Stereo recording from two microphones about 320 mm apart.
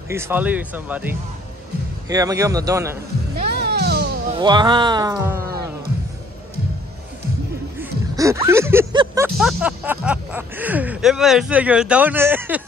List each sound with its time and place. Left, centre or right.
0.1 s a man's voice: centre
3.3 s music: right
4.4 s speech: centre
7.8 s speech: centre